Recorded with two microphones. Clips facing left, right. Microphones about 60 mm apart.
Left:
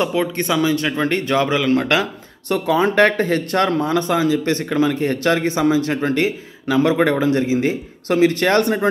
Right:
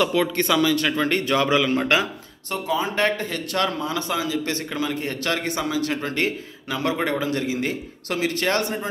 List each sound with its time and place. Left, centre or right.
0.0 s a man's voice: left
1.6 s speech: left